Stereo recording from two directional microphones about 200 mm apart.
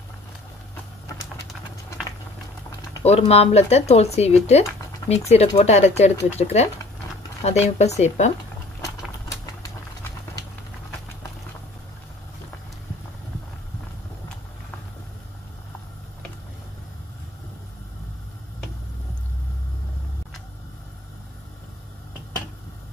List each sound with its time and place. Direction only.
3.0 s speech: 30° left (ahead or behind)